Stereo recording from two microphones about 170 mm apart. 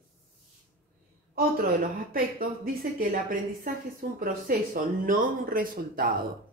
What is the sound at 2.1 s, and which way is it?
Speech, 55° right (ahead or behind).